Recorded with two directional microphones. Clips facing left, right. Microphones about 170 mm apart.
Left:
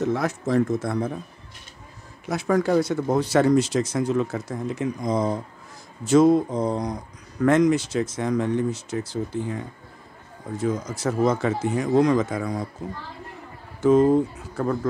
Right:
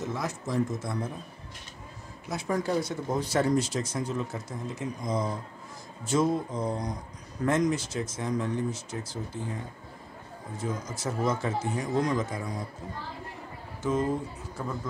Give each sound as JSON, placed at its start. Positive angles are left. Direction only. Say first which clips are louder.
{"t": 0.0, "sound": "speech", "louder": "left 9 dB", "side_deg": 65}
{"t": 2.2, "sound": "speech", "louder": "left 7 dB", "side_deg": 85}
{"t": 10.6, "sound": "speech", "louder": "left 8 dB", "side_deg": 70}
{"t": 13.7, "sound": "speech", "louder": "left 11 dB", "side_deg": 65}